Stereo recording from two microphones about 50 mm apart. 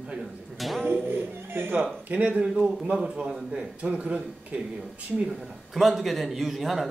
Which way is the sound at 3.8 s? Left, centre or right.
Right.